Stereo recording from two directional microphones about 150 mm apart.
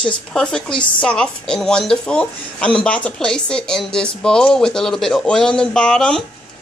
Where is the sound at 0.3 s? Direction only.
5° left (ahead or behind).